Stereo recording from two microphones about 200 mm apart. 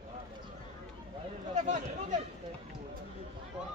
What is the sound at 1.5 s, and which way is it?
Speech, 40° right (ahead or behind).